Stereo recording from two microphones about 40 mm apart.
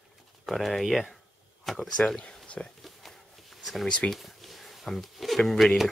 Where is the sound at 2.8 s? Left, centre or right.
Centre.